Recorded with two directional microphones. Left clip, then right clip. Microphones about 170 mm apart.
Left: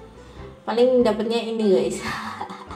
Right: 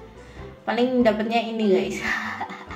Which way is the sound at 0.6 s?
20° left (ahead or behind).